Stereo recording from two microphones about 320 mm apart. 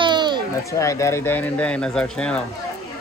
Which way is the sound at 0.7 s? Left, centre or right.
Centre.